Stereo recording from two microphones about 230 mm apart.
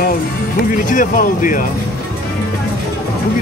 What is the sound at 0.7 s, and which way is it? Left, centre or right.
Speech, left.